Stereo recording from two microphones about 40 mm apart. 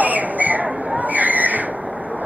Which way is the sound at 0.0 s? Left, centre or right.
Right.